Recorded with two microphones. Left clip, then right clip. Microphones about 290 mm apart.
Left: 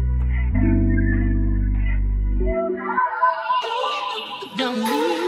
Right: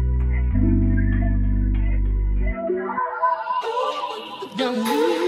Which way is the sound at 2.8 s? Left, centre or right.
Centre.